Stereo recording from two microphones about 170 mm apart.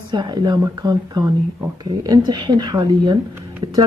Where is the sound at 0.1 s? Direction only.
25° right (ahead or behind).